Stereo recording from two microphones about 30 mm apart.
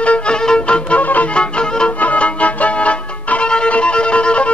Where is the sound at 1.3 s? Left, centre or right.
Left.